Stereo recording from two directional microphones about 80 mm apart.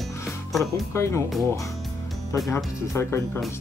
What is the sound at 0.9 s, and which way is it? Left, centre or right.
Speech, left.